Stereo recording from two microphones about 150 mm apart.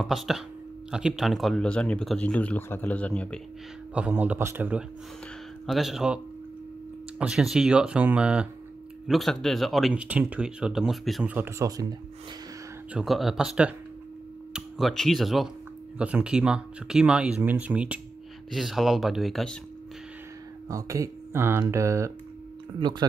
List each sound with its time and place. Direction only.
0.0 s speech: centre (ahead or behind)
3.9 s speech: 10° right (ahead or behind)
11.3 s speech: 15° right (ahead or behind)
12.9 s speech: centre (ahead or behind)
20.6 s speech: 20° right (ahead or behind)